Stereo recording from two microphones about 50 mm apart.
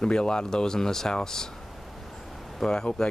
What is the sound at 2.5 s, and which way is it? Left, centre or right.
Speech, centre.